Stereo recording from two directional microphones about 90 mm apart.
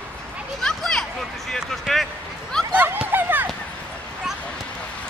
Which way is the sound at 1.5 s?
Centre (ahead or behind).